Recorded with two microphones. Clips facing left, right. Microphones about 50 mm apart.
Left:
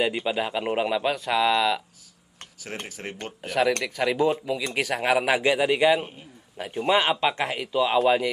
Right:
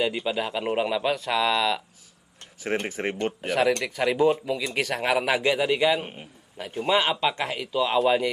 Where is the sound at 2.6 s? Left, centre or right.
Right.